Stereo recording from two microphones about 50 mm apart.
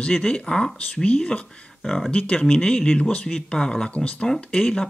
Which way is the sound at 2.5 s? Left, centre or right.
Centre.